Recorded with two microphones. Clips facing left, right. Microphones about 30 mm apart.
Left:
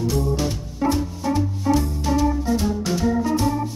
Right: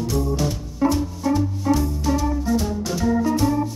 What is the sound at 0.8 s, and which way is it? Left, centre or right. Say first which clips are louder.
Music: right 2 dB; centre.